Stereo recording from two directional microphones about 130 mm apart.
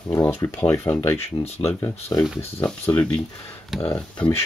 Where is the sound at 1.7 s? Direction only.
20° left (ahead or behind).